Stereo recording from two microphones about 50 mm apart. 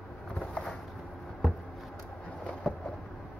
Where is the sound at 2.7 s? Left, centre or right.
Centre.